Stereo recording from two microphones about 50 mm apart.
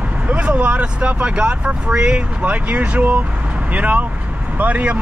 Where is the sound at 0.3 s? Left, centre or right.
Right.